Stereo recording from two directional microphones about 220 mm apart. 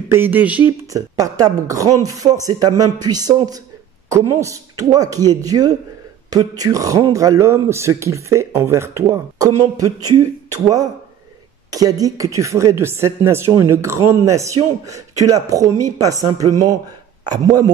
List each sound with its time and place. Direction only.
0.1 s a man's voice: 10° right (ahead or behind)